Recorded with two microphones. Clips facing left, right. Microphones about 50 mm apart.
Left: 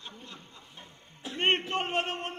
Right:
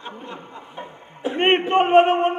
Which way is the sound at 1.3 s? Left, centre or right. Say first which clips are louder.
Right 10 dB; right.